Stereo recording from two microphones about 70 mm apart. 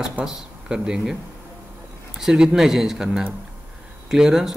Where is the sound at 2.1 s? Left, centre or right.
Centre.